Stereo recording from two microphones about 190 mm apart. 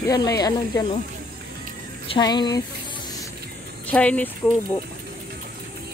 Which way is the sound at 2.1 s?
20° left (ahead or behind).